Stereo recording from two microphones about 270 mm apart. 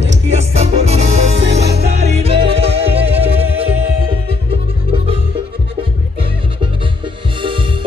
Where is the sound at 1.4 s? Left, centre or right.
Right.